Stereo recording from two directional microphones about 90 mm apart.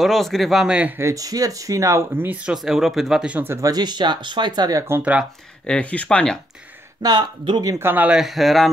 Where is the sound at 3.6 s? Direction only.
50° right (ahead or behind).